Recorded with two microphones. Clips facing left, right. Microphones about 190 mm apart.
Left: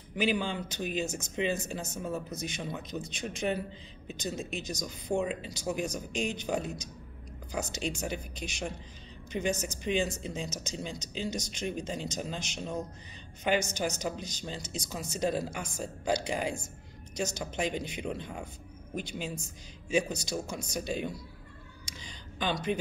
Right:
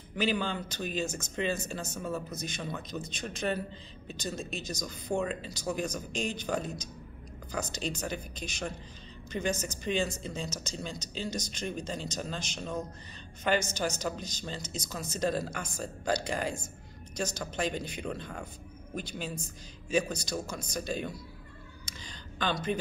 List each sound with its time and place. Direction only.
0.1 s speech: 15° left (ahead or behind)
7.7 s speech: 15° left (ahead or behind)
22.4 s speech: 15° left (ahead or behind)